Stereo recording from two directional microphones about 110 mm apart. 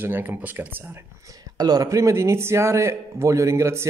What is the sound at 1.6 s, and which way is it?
Speech, 35° right (ahead or behind).